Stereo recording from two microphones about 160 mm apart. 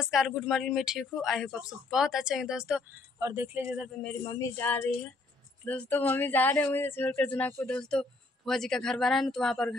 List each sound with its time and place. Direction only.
0.0 s speech: centre (ahead or behind)
3.2 s speech: 20° right (ahead or behind)
4.0 s speech: 5° left (ahead or behind)
4.3 s speech: 15° left (ahead or behind)